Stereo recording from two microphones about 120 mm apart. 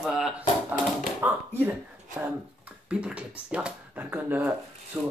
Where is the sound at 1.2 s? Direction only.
15° right (ahead or behind).